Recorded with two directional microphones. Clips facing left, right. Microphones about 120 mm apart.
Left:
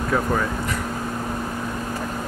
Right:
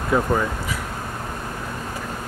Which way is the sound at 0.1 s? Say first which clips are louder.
Right 3 dB; 5° right (ahead or behind).